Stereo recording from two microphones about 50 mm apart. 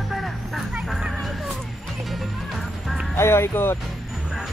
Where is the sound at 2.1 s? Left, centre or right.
Centre.